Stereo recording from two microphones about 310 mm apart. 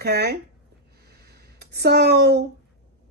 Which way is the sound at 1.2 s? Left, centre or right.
Right.